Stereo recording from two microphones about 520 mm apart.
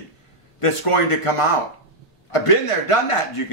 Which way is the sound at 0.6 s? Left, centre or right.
Left.